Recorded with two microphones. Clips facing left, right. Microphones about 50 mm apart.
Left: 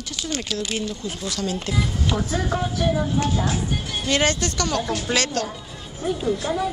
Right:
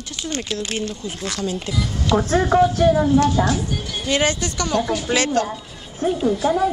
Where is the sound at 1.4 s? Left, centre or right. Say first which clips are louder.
Right 1 dB; right.